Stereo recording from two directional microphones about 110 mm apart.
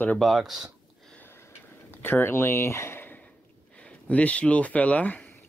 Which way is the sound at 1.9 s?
20° left (ahead or behind).